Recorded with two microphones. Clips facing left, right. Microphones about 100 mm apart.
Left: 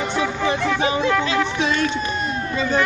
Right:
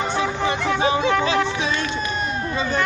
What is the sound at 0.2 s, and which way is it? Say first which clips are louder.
Music: left 1 dB; 30° right (ahead or behind).